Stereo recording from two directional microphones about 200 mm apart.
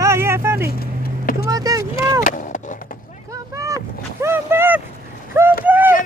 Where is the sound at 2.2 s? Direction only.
40° left (ahead or behind).